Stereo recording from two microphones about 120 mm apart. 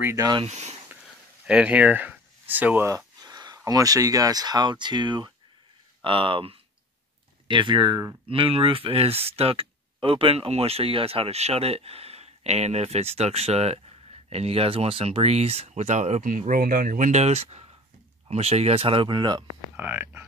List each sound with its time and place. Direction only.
0.1 s speech: 30° right (ahead or behind)
0.5 s speech: 70° right (ahead or behind)
1.4 s speech: 10° right (ahead or behind)
3.2 s speech: 35° right (ahead or behind)
8.3 s speech: 50° right (ahead or behind)
19.8 s speech: 15° right (ahead or behind)